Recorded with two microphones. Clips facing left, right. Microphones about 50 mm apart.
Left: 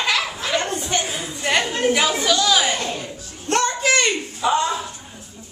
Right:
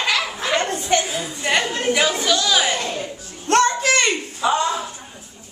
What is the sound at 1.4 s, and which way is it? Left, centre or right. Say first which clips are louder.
A woman's voice: left 1 dB; centre.